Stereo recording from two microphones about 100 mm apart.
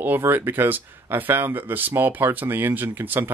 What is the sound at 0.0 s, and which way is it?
Speech, 20° right (ahead or behind).